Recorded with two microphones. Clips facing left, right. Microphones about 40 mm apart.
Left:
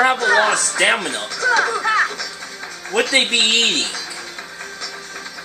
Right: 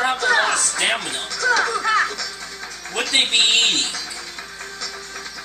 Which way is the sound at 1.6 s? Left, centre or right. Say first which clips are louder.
Left 2 dB; centre.